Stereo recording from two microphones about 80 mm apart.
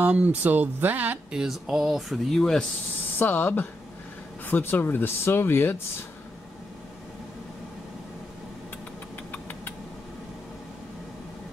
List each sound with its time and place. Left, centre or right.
0.0 s speech: centre
1.3 s speech: centre
3.2 s speech: left
9.3 s engine: left